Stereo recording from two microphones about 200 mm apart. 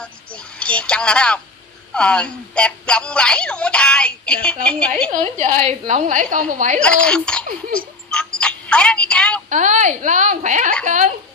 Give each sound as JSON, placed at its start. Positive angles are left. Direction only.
{"t": 0.0, "sound": "a woman's voice", "side_deg": 5}
{"t": 5.1, "sound": "a woman's voice", "side_deg": -35}
{"t": 6.8, "sound": "speech", "side_deg": 5}
{"t": 7.7, "sound": "music", "side_deg": 5}
{"t": 9.5, "sound": "a woman's voice", "side_deg": -35}